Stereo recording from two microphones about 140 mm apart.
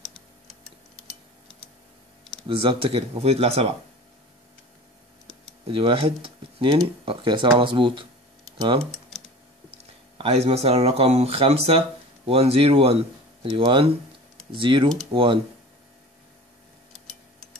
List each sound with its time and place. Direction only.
2.4 s speech: 40° right (ahead or behind)
5.7 s speech: 40° right (ahead or behind)
10.1 s speech: 45° right (ahead or behind)